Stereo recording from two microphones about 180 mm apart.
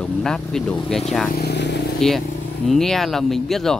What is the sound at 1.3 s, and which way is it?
Speech, 65° left (ahead or behind).